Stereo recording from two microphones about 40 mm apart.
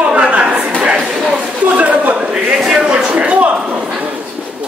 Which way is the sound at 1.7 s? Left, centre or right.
Right.